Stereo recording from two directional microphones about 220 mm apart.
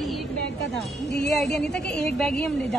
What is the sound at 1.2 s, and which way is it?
A woman's voice, centre (ahead or behind).